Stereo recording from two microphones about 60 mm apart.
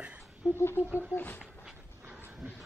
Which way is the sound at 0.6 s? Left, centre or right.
Left.